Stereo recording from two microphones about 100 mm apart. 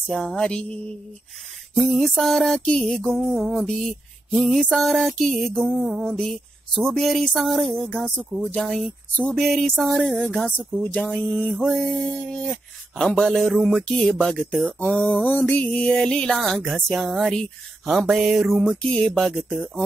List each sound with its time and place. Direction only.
0.1 s music: 5° left (ahead or behind)
1.9 s speech: centre (ahead or behind)
10.7 s music: 15° left (ahead or behind)
11.5 s speech: centre (ahead or behind)
15.2 s music: 15° left (ahead or behind)
16.4 s speech: centre (ahead or behind)
19.5 s speech: 15° right (ahead or behind)